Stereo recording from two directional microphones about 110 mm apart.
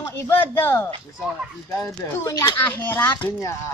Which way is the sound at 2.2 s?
35° left (ahead or behind).